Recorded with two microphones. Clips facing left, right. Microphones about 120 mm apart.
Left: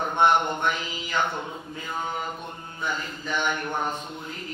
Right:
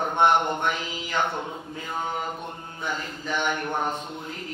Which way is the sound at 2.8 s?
45° right (ahead or behind).